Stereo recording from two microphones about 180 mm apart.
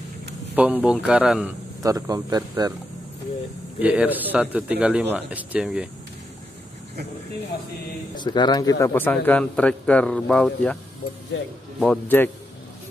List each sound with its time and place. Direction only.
0.6 s speech: 5° right (ahead or behind)
1.8 s speech: 20° right (ahead or behind)
3.8 s a man's voice: 10° right (ahead or behind)
8.2 s a man's voice: 25° left (ahead or behind); by 10.8 s 5° left (ahead or behind)
11.8 s a man's voice: 10° left (ahead or behind)